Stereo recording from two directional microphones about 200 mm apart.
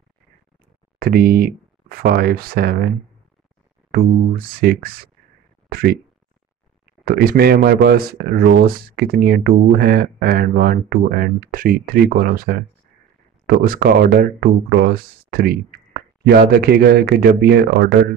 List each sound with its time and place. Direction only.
0.9 s speech: 50° right (ahead or behind)
3.9 s speech: 50° right (ahead or behind)
7.1 s speech: 50° right (ahead or behind)